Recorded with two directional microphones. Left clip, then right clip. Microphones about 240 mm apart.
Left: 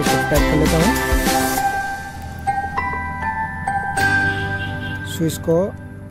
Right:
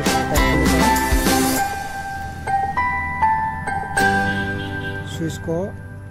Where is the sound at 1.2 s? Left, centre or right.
Centre.